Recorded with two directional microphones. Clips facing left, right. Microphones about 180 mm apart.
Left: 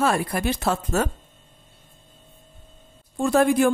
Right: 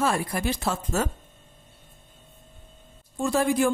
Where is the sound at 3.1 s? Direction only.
60° left (ahead or behind).